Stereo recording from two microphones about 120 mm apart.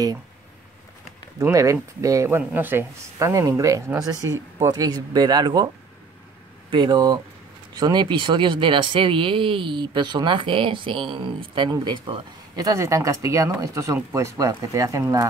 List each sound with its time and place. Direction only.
1.4 s speech: 25° right (ahead or behind)
6.7 s speech: 40° right (ahead or behind)